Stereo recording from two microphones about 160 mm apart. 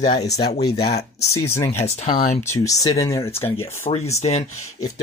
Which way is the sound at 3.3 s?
35° left (ahead or behind).